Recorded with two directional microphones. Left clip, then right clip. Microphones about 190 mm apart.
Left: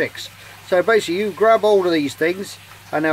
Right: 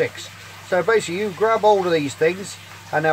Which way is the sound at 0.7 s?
50° left (ahead or behind).